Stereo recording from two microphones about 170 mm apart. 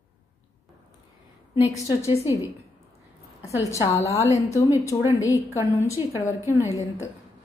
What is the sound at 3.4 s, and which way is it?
A woman's voice, 20° left (ahead or behind).